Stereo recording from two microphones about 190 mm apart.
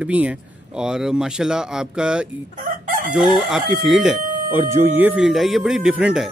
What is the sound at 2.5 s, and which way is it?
Chicken, 45° right (ahead or behind).